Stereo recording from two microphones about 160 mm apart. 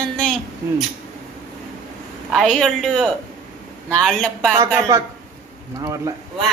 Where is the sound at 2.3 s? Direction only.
Centre (ahead or behind).